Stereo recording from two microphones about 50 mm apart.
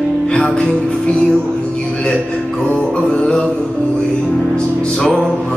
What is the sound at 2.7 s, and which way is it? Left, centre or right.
Music, left.